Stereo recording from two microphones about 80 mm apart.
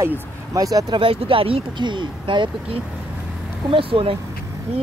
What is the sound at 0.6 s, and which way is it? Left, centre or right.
Speech, right.